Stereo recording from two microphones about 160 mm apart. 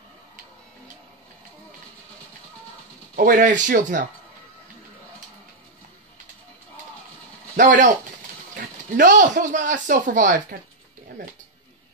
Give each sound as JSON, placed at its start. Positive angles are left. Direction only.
{"t": 3.2, "sound": "speech", "side_deg": -55}
{"t": 7.5, "sound": "speech", "side_deg": -50}